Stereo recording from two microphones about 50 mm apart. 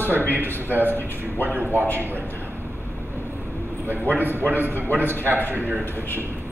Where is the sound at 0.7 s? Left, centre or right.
Right.